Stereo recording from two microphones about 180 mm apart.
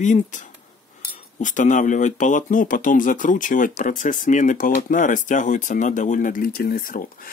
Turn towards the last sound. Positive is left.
turn(degrees=50)  # may be behind; listen again after turning